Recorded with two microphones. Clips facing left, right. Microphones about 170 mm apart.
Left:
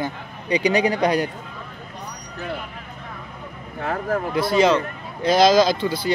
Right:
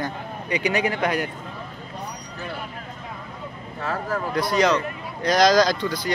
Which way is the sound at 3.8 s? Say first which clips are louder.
Left 3 dB; 55° left (ahead or behind).